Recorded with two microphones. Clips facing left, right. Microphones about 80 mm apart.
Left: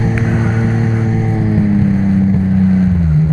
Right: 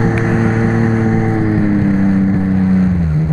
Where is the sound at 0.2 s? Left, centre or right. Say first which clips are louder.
Right 2 dB; right.